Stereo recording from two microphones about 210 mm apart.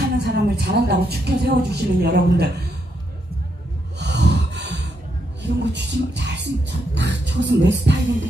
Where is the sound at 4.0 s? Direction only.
55° right (ahead or behind).